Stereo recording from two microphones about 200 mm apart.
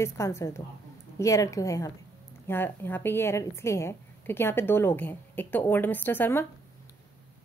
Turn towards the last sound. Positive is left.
turn(degrees=10)  # may be behind; listen again after turning